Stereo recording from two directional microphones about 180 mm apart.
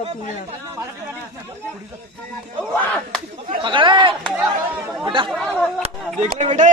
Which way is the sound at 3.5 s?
25° right (ahead or behind).